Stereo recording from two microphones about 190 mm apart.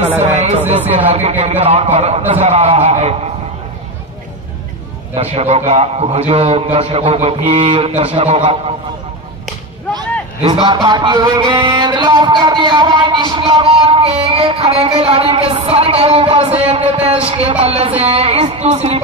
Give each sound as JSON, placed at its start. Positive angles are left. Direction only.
{"t": 0.2, "sound": "a man's voice", "side_deg": -35}
{"t": 5.1, "sound": "a man's voice", "side_deg": -35}
{"t": 10.4, "sound": "a sound", "side_deg": -25}
{"t": 17.3, "sound": "a man's voice", "side_deg": -35}